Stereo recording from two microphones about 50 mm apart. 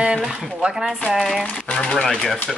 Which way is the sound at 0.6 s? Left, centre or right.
Centre.